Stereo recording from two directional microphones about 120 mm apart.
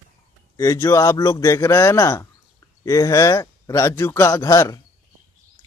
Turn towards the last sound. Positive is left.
turn(degrees=30)  # may be behind; listen again after turning